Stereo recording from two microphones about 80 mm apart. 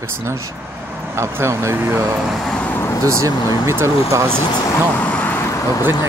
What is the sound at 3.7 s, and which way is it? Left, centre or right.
Speech, right.